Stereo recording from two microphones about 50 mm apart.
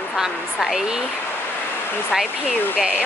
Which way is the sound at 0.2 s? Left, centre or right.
Centre.